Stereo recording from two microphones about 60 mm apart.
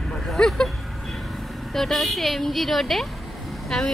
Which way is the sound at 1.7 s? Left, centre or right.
Centre.